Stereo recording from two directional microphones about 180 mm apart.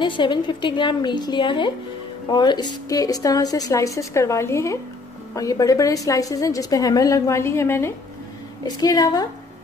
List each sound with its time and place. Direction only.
0.0 s a woman's voice: 25° left (ahead or behind)